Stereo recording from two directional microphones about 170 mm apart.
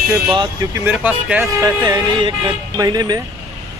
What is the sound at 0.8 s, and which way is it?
Speech, 5° right (ahead or behind).